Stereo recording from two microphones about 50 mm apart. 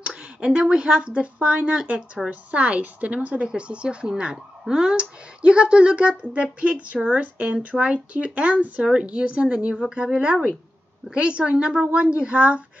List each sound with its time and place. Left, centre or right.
0.0 s speech: right